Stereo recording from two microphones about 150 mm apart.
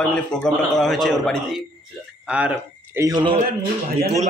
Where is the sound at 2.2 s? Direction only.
10° right (ahead or behind).